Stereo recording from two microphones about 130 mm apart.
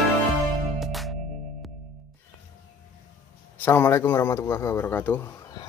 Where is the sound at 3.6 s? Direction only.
20° left (ahead or behind).